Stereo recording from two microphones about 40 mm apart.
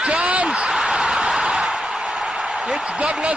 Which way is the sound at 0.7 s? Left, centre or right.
Centre.